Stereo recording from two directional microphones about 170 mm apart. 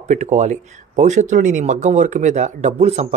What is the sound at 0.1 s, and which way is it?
Speech, 45° right (ahead or behind).